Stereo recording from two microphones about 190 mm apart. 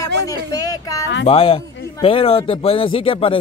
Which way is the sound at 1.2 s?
30° left (ahead or behind).